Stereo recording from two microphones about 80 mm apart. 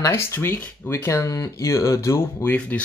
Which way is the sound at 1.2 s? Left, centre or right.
Left.